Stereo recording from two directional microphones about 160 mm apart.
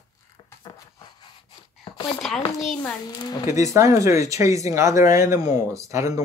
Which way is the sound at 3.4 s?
20° right (ahead or behind).